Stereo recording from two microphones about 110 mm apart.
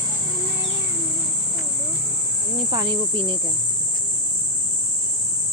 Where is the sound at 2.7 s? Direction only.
45° right (ahead or behind).